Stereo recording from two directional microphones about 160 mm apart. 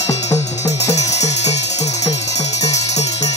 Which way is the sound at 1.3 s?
45° left (ahead or behind).